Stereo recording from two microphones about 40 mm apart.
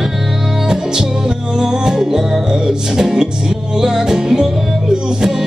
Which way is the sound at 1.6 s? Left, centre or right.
Centre.